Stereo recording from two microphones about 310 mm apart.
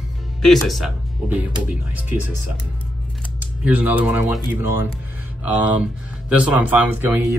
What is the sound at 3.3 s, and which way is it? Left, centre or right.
Speech, centre.